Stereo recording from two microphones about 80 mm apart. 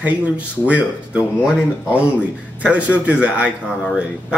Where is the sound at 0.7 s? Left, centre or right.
Centre.